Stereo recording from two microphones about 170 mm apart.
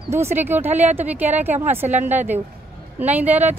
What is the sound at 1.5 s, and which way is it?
Speech, 45° right (ahead or behind).